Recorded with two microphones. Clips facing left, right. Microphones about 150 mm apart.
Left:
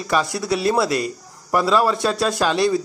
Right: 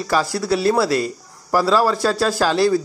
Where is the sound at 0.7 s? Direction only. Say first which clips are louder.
Right 2 dB; centre (ahead or behind).